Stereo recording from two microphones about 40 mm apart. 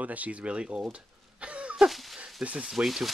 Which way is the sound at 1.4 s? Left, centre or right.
Right.